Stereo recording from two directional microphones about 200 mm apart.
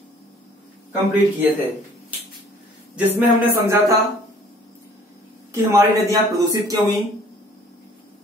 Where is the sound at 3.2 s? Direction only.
10° right (ahead or behind).